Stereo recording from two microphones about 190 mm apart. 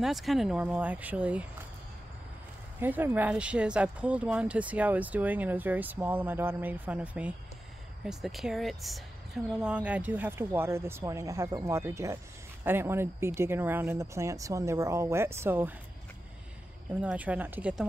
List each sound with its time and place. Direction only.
0.0 s speech: centre (ahead or behind)
2.8 s speech: 10° right (ahead or behind)
16.9 s speech: 10° right (ahead or behind)